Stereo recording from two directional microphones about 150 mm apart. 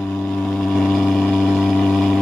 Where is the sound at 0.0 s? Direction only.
5° left (ahead or behind).